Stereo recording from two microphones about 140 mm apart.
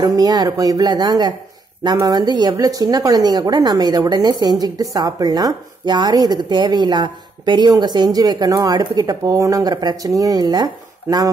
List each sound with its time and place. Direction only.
0.0 s speech: 25° right (ahead or behind)